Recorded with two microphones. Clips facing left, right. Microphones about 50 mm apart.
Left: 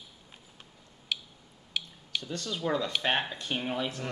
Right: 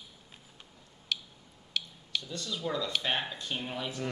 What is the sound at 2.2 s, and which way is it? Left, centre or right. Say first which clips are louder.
Speech: left 5 dB; left.